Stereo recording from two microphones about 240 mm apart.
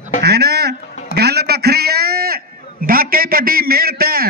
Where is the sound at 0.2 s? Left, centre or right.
Right.